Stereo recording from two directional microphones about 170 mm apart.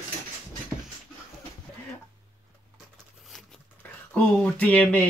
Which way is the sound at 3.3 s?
5° left (ahead or behind).